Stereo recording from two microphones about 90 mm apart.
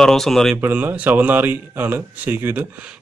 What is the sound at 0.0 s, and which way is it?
Speech, 5° left (ahead or behind).